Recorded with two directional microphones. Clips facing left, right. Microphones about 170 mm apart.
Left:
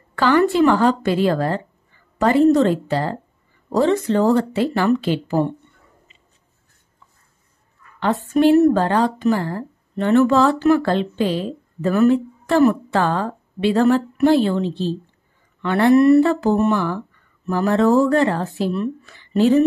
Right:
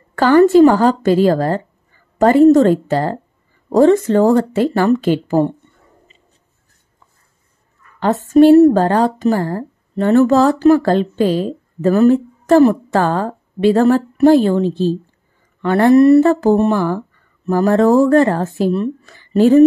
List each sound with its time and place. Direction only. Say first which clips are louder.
0.1 s speech: right 7 dB; 40° right (ahead or behind)
8.0 s speech: right 6 dB; 40° right (ahead or behind)